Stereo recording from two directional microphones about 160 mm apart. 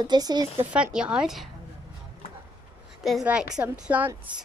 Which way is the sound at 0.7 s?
5° right (ahead or behind).